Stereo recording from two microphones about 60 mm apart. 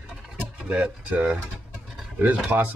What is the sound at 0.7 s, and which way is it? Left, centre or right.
Speech, right.